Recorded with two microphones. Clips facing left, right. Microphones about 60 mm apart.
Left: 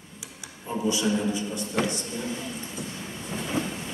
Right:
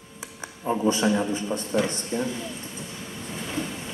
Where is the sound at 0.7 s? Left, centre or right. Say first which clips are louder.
Right 4 dB; right.